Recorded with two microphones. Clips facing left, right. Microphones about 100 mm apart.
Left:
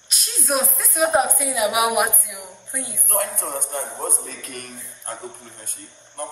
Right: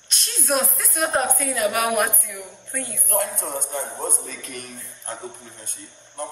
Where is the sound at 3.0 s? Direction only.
50° left (ahead or behind).